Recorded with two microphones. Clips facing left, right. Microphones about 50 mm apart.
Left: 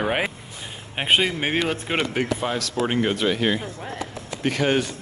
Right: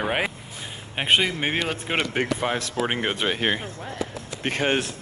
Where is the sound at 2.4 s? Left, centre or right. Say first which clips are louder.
Left 1 dB; right.